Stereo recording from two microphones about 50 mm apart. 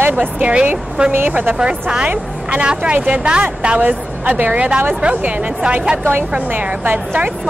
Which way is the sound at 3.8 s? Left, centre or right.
Right.